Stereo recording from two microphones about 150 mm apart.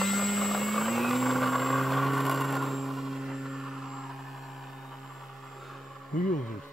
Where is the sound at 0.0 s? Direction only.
Centre (ahead or behind).